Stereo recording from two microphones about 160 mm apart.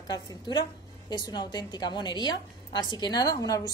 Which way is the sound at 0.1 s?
25° left (ahead or behind).